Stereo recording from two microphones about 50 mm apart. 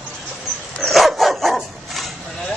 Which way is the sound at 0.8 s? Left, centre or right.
Centre.